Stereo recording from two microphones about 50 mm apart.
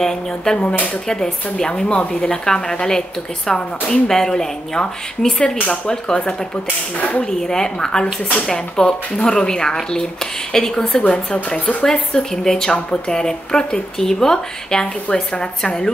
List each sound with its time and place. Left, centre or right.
0.6 s speech: left
1.0 s speech: centre
7.0 s speech: left
7.2 s speech: centre